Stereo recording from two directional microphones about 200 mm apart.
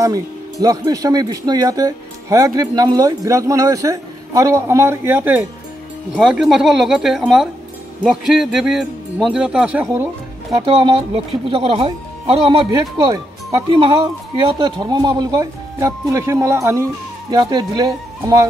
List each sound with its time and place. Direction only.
0.0 s a man's voice: 15° right (ahead or behind)
10.6 s speech: 25° right (ahead or behind)